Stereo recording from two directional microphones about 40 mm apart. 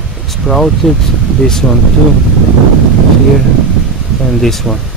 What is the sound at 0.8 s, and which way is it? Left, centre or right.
Speech, centre.